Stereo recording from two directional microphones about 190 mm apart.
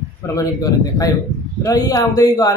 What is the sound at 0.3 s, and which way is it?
Speech, 20° left (ahead or behind).